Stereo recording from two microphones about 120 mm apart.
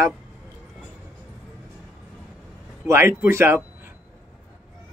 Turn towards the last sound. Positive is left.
turn(degrees=-20)  # may be behind; listen again after turning